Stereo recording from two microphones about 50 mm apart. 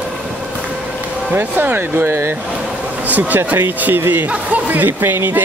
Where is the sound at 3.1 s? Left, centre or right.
Right.